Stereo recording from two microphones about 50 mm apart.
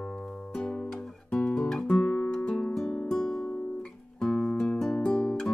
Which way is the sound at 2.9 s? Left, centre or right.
Centre.